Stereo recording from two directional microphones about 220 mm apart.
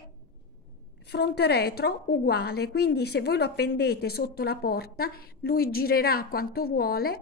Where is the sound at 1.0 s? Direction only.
50° left (ahead or behind).